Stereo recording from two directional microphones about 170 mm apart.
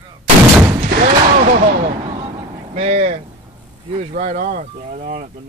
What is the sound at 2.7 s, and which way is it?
Speech, 40° right (ahead or behind).